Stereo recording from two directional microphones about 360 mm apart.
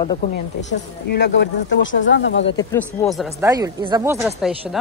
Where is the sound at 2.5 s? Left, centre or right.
Centre.